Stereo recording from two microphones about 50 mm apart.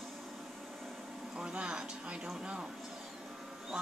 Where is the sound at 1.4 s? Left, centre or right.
Centre.